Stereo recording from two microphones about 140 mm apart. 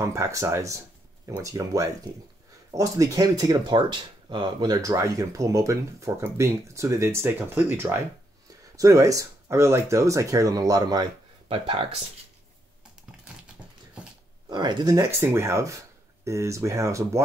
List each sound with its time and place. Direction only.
0.0 s speech: 20° right (ahead or behind)
11.4 s speech: 40° right (ahead or behind)
14.5 s speech: 30° right (ahead or behind)